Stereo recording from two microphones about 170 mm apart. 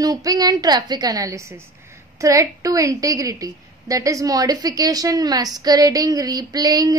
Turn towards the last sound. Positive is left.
turn(degrees=-20)  # may be behind; listen again after turning